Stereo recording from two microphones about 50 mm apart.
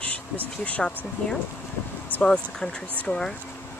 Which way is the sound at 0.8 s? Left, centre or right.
Centre.